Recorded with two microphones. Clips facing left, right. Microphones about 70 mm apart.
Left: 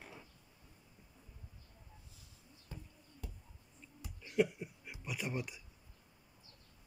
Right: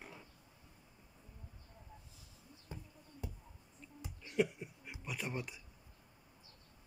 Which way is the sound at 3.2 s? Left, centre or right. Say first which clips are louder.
Right 4 dB; right.